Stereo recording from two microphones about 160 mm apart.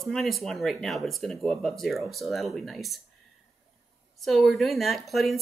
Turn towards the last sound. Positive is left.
turn(degrees=0)  # may be behind; listen again after turning